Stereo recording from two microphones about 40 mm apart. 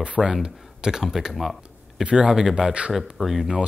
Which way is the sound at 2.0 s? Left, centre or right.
Right.